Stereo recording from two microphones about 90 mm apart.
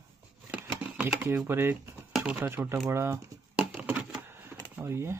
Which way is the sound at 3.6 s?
15° right (ahead or behind).